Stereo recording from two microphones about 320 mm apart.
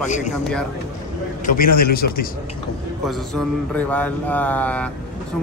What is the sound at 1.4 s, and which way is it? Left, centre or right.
Speech, left.